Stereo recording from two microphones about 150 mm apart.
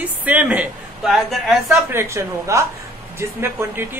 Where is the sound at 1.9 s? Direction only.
15° right (ahead or behind).